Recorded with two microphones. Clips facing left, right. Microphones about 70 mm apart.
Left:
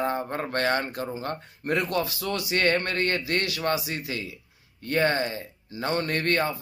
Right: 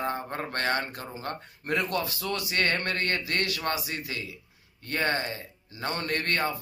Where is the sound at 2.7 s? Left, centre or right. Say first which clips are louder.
Left 4 dB; centre.